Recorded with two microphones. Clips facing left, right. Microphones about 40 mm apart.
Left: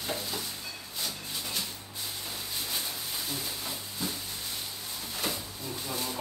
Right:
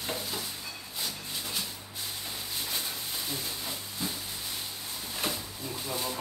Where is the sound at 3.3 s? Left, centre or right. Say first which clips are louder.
Even; centre.